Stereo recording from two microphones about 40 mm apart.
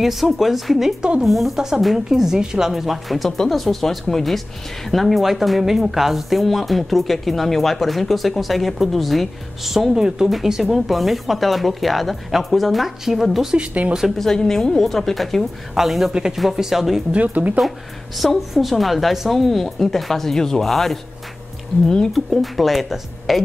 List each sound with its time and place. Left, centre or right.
0.0 s speech: centre
3.3 s a woman's voice: centre
9.8 s speech: centre
13.6 s speech: right
14.1 s a woman's voice: centre
15.7 s speech: centre
16.1 s speech: centre
17.1 s speech: right
17.6 s a woman's voice: centre
22.1 s speech: centre